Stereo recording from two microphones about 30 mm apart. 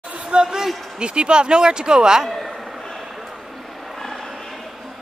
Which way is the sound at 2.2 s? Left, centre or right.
Centre.